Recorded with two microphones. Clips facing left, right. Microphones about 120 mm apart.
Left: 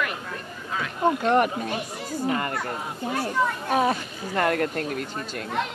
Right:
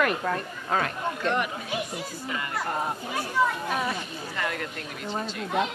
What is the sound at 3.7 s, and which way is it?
A woman's voice, 40° left (ahead or behind).